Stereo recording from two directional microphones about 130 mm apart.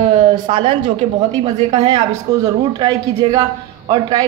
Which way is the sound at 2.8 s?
45° right (ahead or behind).